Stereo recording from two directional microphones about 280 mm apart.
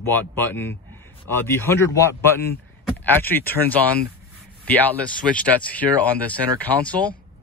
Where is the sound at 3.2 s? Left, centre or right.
Centre.